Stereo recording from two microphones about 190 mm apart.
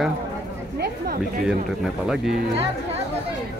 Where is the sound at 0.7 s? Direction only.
55° right (ahead or behind).